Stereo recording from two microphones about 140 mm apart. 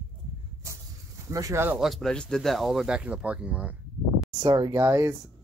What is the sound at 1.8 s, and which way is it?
Speech, centre (ahead or behind).